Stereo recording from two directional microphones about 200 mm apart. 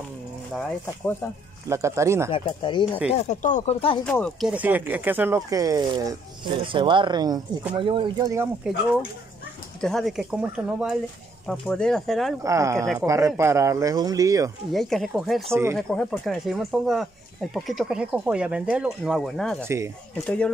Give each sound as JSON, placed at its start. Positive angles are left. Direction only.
{"t": 0.6, "sound": "speech", "side_deg": 5}
{"t": 1.7, "sound": "speech", "side_deg": -15}
{"t": 2.3, "sound": "speech", "side_deg": 25}
{"t": 3.1, "sound": "speech", "side_deg": 35}
{"t": 4.0, "sound": "speech", "side_deg": 5}
{"t": 9.8, "sound": "speech", "side_deg": 0}
{"t": 12.4, "sound": "speech", "side_deg": -15}
{"t": 14.7, "sound": "speech", "side_deg": 0}
{"t": 15.5, "sound": "speech", "side_deg": -10}
{"t": 15.9, "sound": "speech", "side_deg": 5}
{"t": 19.6, "sound": "speech", "side_deg": -15}
{"t": 20.2, "sound": "speech", "side_deg": 5}